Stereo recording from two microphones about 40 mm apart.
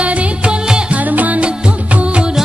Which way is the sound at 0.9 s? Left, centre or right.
Right.